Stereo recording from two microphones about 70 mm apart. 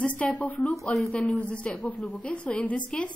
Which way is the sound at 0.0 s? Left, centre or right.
Centre.